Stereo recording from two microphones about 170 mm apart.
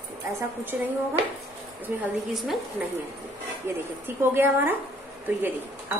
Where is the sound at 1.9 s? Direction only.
10° right (ahead or behind).